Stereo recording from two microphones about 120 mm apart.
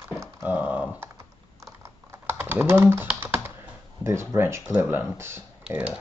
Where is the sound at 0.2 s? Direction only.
15° right (ahead or behind).